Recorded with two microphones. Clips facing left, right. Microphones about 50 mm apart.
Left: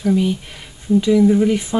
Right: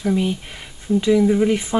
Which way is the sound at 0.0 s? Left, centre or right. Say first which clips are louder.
Left 3 dB; centre.